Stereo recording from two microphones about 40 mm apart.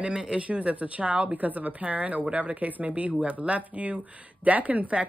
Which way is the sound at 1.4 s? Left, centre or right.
Right.